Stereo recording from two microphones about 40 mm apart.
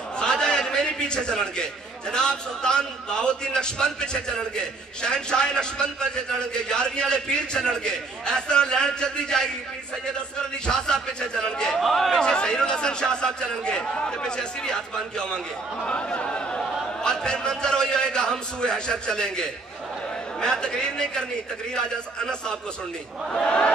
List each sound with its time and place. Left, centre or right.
0.2 s a man's voice: centre
10.7 s a man's voice: centre
11.8 s speech: centre
12.2 s a man's voice: centre
16.1 s a sound: left
17.0 s a man's voice: left
23.4 s a man's voice: left